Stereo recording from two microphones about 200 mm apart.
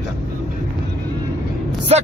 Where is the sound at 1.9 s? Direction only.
30° right (ahead or behind).